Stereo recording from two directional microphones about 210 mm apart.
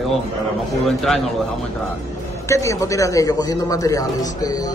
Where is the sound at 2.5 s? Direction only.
15° left (ahead or behind).